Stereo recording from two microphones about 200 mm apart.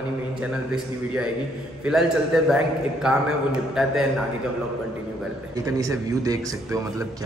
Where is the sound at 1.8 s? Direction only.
Centre (ahead or behind).